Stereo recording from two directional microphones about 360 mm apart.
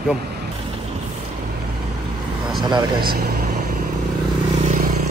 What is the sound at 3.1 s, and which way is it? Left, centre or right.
Vehicle, right.